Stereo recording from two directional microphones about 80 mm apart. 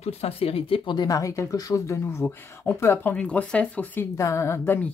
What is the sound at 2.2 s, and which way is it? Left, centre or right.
Speech, left.